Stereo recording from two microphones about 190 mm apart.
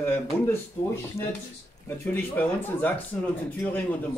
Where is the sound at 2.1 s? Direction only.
10° left (ahead or behind).